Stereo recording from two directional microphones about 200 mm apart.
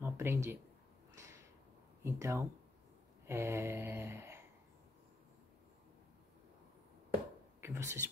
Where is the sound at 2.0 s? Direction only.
15° right (ahead or behind).